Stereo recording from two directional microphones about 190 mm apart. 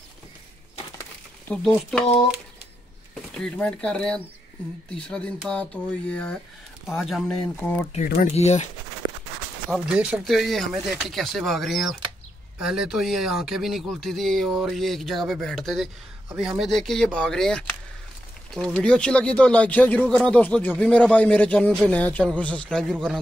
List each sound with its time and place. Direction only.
1.5 s speech: 5° left (ahead or behind)
8.3 s speech: 35° left (ahead or behind)
9.9 s speech: 5° right (ahead or behind)